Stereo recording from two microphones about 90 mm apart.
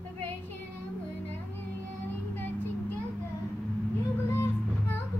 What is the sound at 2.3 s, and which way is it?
Vehicle, 20° left (ahead or behind).